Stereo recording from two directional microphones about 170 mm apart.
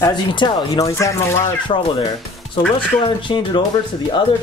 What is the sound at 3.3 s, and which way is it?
Speech, 25° left (ahead or behind).